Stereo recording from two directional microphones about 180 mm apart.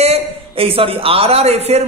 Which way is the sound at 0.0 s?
35° right (ahead or behind).